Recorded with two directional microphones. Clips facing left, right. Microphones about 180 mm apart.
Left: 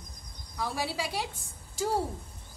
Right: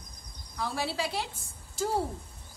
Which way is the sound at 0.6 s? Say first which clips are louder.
Right 1 dB; 15° left (ahead or behind).